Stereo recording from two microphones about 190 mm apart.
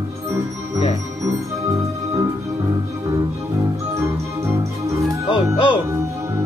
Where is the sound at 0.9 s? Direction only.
15° right (ahead or behind).